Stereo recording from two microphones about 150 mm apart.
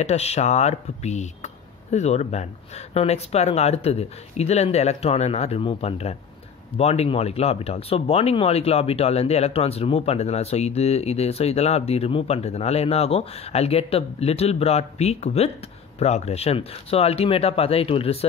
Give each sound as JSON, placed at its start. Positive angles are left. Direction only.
{"t": 0.0, "sound": "speech", "side_deg": 45}